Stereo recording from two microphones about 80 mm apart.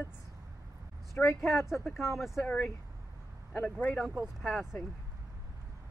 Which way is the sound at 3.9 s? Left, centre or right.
Centre.